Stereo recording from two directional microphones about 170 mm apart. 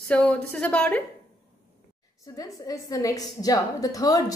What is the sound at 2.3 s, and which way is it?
A woman's voice, 20° left (ahead or behind).